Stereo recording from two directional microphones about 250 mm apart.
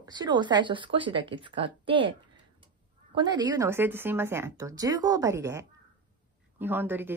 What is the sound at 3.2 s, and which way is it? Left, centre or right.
Speech, centre.